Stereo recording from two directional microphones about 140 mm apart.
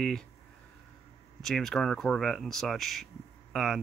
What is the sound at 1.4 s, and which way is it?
Speech, centre (ahead or behind).